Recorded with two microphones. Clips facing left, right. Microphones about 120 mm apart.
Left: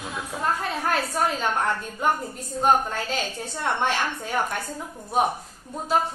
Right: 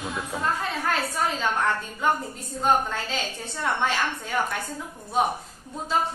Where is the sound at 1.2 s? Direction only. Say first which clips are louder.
Left 3 dB; 50° left (ahead or behind).